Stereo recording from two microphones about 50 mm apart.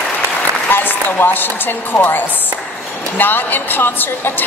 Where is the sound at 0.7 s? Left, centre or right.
Left.